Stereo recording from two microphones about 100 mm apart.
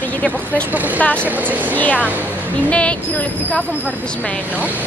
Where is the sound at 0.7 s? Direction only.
15° right (ahead or behind).